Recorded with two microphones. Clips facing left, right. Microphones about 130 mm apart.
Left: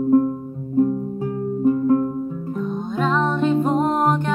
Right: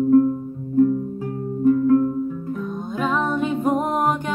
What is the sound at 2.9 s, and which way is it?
Music, 10° right (ahead or behind).